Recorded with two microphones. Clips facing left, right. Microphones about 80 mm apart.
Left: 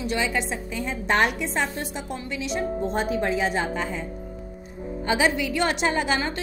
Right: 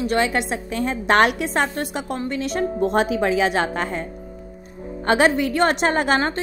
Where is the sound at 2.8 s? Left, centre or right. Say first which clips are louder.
Right 8 dB; right.